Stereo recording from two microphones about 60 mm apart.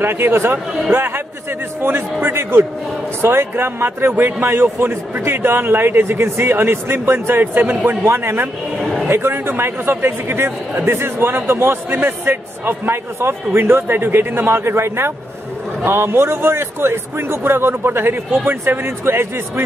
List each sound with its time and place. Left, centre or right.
0.0 s a man's voice: right
7.6 s a man's voice: right
8.0 s a man's voice: right